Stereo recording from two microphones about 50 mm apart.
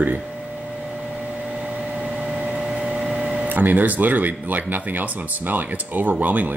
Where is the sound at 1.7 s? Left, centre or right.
Right.